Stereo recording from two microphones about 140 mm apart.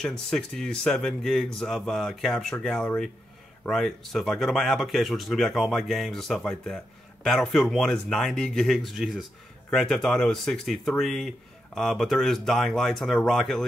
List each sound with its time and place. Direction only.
0.0 s speech: 5° left (ahead or behind)